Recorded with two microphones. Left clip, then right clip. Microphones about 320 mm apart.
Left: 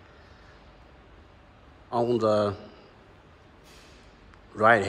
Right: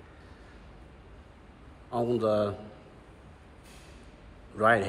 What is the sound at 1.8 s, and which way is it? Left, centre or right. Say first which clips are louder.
Speech: left 3 dB; centre.